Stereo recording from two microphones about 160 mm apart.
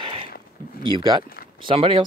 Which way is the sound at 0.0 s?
35° right (ahead or behind).